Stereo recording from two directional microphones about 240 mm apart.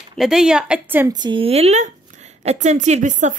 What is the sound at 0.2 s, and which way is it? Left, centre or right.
Speech, centre.